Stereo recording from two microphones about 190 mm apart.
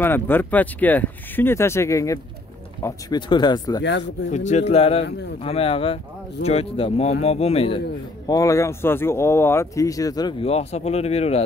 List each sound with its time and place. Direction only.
0.0 s speech: 10° left (ahead or behind)
3.8 s speech: 65° left (ahead or behind)
4.5 s speech: 35° left (ahead or behind)
8.3 s speech: 15° left (ahead or behind)
10.4 s speech: 35° left (ahead or behind)